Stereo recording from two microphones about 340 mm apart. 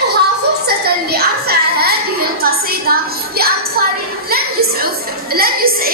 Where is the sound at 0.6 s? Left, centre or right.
Right.